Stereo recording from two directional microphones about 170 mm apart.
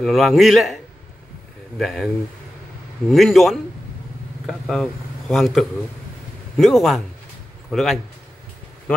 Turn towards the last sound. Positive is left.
turn(degrees=0)  # may be behind; listen again after turning